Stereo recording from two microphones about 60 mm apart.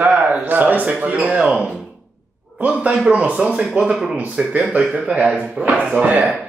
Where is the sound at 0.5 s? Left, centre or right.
Right.